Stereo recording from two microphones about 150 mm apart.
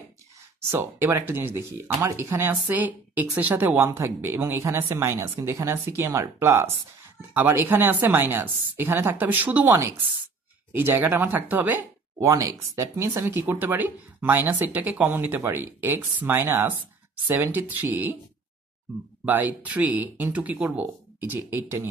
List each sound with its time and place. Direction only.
0.6 s speech: 15° right (ahead or behind)
19.2 s speech: 10° right (ahead or behind)